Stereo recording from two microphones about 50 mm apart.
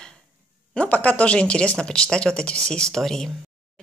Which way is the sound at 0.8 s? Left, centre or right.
Left.